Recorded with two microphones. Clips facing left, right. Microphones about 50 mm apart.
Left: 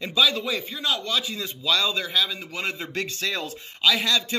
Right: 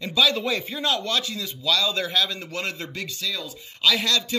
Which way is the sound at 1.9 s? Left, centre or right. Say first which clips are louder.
Right 1 dB; centre.